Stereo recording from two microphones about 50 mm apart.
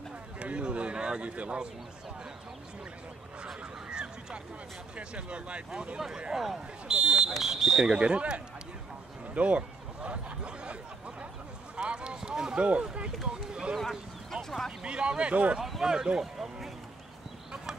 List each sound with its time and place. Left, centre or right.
0.4 s a sound: right
3.4 s speech: centre
5.9 s speech: centre
7.9 s speech: right
9.3 s a sound: right
11.7 s clip-clop: centre
12.2 s run: centre
13.3 s speech: centre
13.7 s a sound: centre
14.8 s speech: right
15.8 s speech: centre